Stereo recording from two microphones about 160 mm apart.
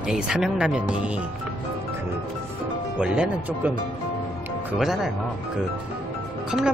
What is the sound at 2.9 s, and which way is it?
Speech, 5° right (ahead or behind).